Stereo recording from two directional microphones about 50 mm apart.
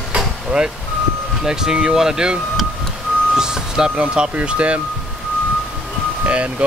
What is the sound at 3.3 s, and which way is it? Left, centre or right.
Speech, centre.